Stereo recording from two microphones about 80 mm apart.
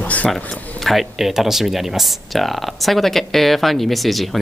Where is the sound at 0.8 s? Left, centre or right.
Centre.